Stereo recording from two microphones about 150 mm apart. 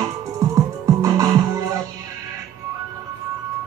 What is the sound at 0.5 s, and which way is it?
Music, 20° right (ahead or behind).